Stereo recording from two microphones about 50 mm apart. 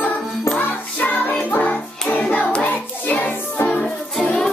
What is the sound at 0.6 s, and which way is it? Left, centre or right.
Music, left.